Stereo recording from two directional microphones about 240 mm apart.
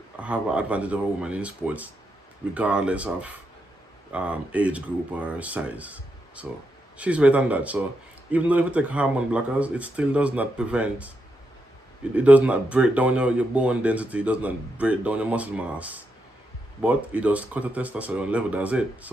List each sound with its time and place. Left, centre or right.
0.2 s speech: centre